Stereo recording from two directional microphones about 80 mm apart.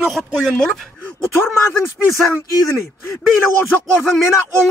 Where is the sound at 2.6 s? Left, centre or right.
Left.